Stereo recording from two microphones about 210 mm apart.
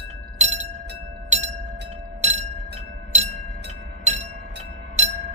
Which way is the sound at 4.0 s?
35° right (ahead or behind).